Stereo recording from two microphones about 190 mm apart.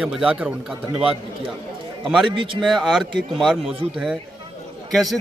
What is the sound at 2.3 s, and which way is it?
Speech, 25° right (ahead or behind).